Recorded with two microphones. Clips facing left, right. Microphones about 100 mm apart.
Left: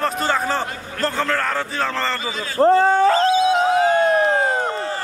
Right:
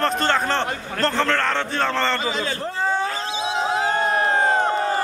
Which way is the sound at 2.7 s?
75° left (ahead or behind).